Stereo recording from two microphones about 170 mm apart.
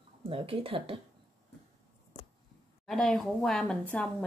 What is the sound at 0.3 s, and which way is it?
Speech, 30° right (ahead or behind).